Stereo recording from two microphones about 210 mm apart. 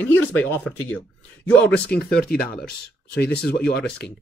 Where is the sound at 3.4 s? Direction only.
5° left (ahead or behind).